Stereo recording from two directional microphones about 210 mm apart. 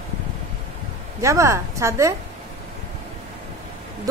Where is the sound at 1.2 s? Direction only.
15° right (ahead or behind).